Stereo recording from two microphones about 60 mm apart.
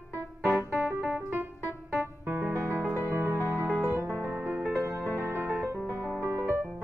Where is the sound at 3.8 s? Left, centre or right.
Right.